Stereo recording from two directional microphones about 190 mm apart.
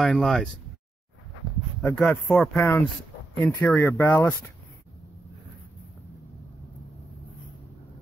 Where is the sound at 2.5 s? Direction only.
10° left (ahead or behind).